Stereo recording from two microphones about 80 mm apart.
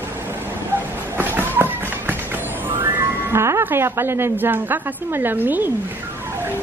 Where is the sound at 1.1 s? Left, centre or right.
Right.